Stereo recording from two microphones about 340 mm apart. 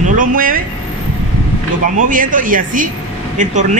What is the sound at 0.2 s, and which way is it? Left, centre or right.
Speech, right.